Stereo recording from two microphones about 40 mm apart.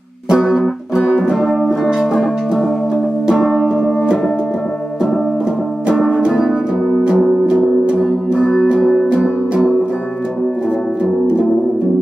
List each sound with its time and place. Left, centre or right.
0.3 s music: centre
1.4 s music: centre
3.3 s music: centre
5.9 s music: centre
7.4 s music: right
8.8 s music: centre
9.1 s music: centre